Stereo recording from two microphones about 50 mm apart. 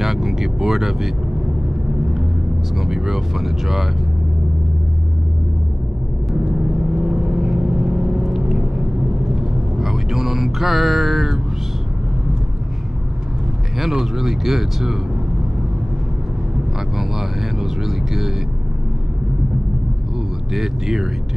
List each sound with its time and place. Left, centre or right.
0.0 s vehicle: centre
2.8 s speech: centre
7.0 s vehicle: centre
9.8 s music: centre
13.7 s music: centre
16.9 s music: centre
20.5 s music: centre